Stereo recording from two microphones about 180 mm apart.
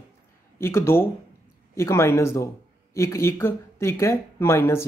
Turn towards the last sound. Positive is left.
turn(degrees=15)  # may be behind; listen again after turning